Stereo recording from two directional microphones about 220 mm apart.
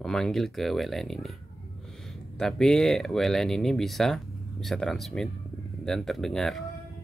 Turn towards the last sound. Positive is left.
turn(degrees=0)  # may be behind; listen again after turning